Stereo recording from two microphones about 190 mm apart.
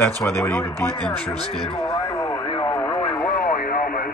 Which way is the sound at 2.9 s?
30° left (ahead or behind).